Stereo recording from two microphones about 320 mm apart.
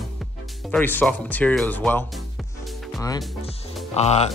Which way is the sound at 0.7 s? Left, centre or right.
Centre.